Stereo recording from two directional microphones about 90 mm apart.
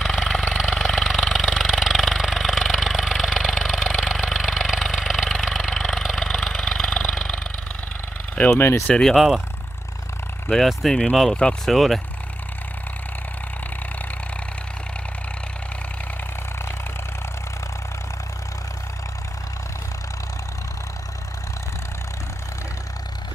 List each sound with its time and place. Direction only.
0.0 s a sound: 5° left (ahead or behind)
8.5 s speech: 30° left (ahead or behind)
8.8 s speech: 5° left (ahead or behind)
10.5 s speech: centre (ahead or behind)